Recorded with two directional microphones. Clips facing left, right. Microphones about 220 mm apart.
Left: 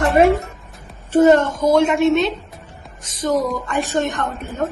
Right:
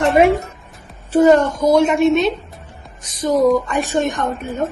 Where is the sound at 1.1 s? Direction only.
15° right (ahead or behind).